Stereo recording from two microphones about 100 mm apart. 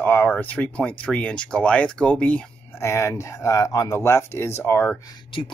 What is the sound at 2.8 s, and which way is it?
Speech, 25° left (ahead or behind).